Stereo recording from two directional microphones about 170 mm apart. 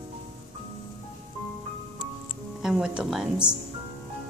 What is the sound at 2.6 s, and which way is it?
Speech, 5° right (ahead or behind).